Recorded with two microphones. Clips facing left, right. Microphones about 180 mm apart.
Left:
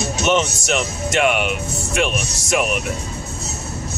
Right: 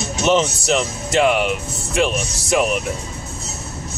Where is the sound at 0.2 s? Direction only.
30° right (ahead or behind).